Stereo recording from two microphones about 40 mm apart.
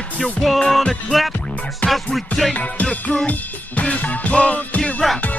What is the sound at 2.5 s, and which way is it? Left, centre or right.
Music, left.